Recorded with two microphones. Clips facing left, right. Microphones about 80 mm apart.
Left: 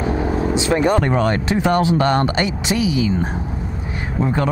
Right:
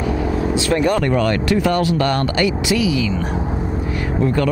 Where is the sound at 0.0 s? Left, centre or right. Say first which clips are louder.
Even; left.